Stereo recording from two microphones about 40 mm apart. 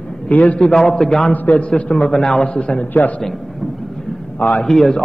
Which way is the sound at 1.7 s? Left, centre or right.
Left.